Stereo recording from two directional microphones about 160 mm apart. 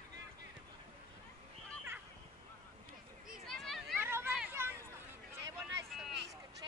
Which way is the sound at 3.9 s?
15° right (ahead or behind).